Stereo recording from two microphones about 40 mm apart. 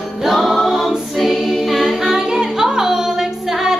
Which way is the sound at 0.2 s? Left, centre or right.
Centre.